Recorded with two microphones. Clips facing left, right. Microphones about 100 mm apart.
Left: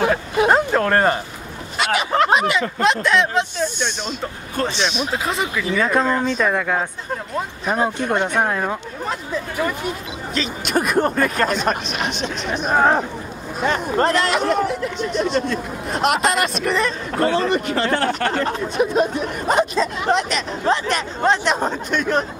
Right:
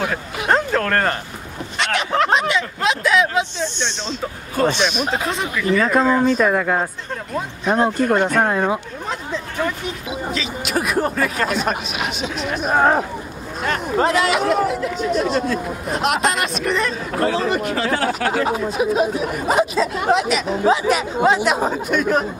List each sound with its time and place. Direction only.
0.5 s a sound: 10° left (ahead or behind)
1.8 s speech: 5° left (ahead or behind)
3.6 s speech: 10° left (ahead or behind)
5.2 s speech: centre (ahead or behind)